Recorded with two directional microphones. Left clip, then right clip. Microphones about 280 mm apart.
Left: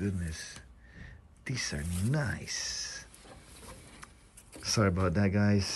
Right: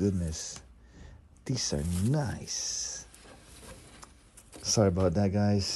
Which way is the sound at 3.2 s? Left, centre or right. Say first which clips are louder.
Even; centre.